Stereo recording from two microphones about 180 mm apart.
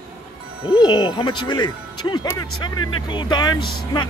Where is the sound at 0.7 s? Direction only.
25° left (ahead or behind).